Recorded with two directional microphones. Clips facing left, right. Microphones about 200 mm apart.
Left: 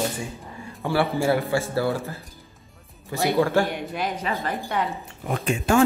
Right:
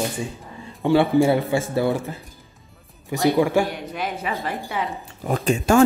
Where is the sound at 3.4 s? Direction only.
15° right (ahead or behind).